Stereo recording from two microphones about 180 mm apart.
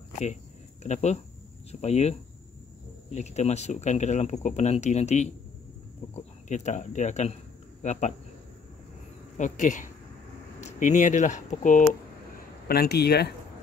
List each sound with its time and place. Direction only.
0.8 s a man's voice: 40° left (ahead or behind)
9.4 s speech: 45° left (ahead or behind)
12.6 s speech: 60° left (ahead or behind)